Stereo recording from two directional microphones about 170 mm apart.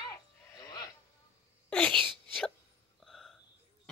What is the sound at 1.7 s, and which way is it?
Wail, 5° left (ahead or behind).